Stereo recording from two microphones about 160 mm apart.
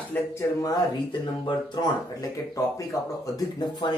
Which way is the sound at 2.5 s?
20° left (ahead or behind).